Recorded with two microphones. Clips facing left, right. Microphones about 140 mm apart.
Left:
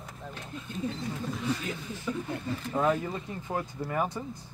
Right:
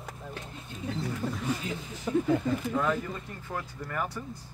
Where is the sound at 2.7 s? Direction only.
20° left (ahead or behind).